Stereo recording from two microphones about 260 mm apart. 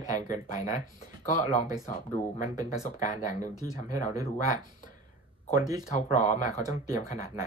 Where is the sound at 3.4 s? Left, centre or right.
Centre.